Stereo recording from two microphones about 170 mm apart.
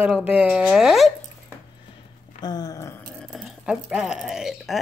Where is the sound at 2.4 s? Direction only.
25° left (ahead or behind).